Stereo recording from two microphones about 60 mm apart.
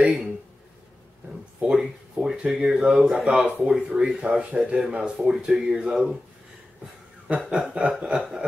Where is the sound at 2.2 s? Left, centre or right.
Centre.